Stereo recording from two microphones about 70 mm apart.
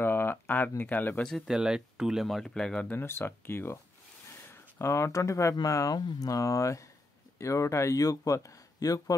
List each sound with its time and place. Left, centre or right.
0.0 s a sound: left
1.5 s speech: centre
2.2 s speech: centre
2.9 s speech: left
5.9 s speech: left